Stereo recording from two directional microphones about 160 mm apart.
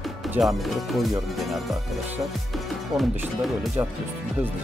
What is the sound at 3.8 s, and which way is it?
Speech, 20° right (ahead or behind).